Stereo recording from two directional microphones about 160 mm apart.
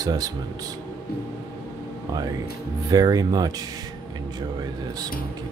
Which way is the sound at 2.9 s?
25° right (ahead or behind).